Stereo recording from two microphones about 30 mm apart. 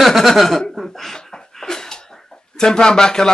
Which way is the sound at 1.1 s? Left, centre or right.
Centre.